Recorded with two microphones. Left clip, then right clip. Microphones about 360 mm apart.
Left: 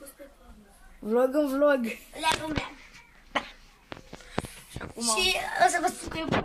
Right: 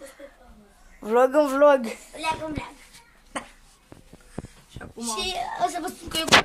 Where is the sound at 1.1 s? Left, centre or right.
Right.